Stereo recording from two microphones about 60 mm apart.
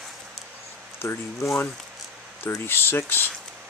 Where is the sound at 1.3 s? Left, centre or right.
Left.